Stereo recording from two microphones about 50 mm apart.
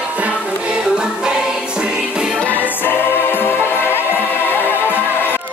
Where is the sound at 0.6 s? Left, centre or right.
Centre.